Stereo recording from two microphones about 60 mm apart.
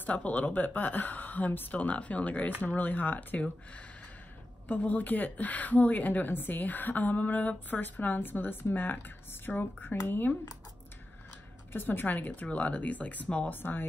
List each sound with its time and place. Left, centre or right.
0.0 s a woman's voice: left
4.6 s a woman's voice: left
11.7 s a woman's voice: left